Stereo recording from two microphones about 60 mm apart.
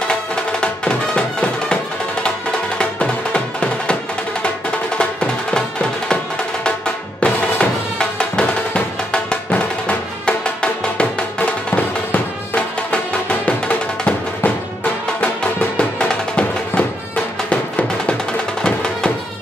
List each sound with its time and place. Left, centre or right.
0.1 s music: centre
2.8 s music: centre
4.9 s music: centre
7.2 s music: left